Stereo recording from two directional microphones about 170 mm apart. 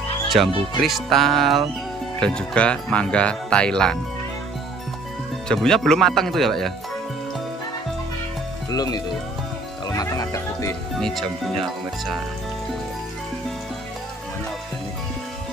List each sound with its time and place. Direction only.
0.3 s speech: centre (ahead or behind)
5.5 s speech: 5° left (ahead or behind)
8.6 s speech: 20° left (ahead or behind)
11.0 s speech: centre (ahead or behind)